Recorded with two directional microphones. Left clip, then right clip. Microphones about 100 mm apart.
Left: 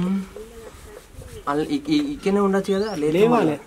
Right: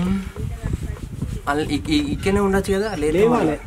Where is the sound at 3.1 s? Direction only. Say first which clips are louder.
Even; 20° left (ahead or behind).